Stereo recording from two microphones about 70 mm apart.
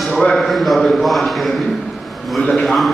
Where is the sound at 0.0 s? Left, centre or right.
Centre.